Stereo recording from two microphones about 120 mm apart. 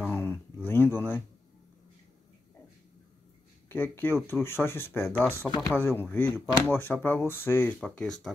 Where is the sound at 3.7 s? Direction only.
15° left (ahead or behind).